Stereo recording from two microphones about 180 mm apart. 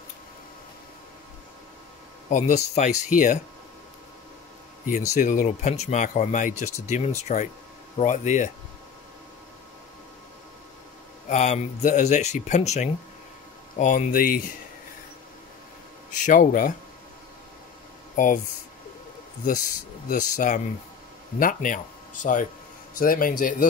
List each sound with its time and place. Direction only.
2.2 s speech: 40° left (ahead or behind)
5.1 s speech: 45° left (ahead or behind)
11.2 s speech: 40° left (ahead or behind)
16.3 s speech: 50° left (ahead or behind)
18.1 s speech: 45° left (ahead or behind)
20.1 s speech: 45° left (ahead or behind)